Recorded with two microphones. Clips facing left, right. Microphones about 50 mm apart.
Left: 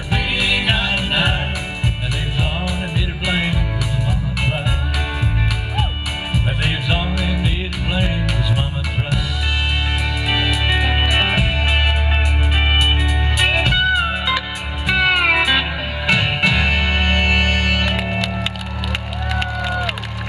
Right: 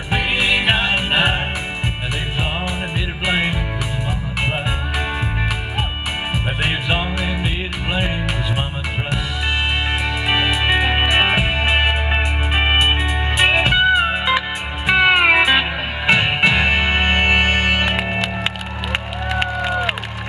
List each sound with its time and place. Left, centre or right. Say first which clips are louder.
0.1 s music: right 2 dB; right
3.3 s music: right 2 dB; right
6.3 s music: left 1 dB; right
10.2 s music: right 2 dB; right
19.3 s run: right 2 dB; right